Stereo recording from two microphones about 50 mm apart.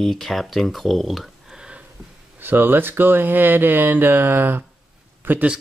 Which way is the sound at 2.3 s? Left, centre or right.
Right.